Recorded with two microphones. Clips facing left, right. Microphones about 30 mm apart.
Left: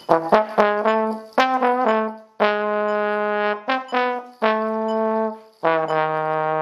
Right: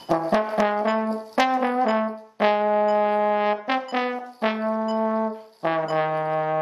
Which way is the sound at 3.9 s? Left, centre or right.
Centre.